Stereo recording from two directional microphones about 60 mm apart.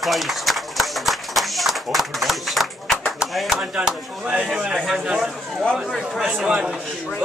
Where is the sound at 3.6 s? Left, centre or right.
Centre.